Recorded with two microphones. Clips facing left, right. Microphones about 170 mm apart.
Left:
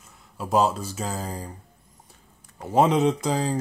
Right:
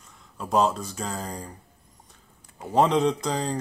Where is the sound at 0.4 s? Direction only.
5° left (ahead or behind).